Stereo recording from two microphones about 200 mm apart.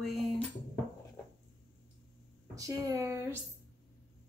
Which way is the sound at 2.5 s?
20° right (ahead or behind).